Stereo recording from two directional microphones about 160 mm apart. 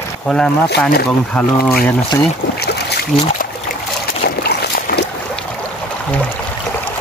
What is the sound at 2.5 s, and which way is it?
Boat, 90° left.